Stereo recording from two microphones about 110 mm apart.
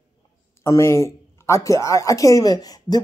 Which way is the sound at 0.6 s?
25° left (ahead or behind).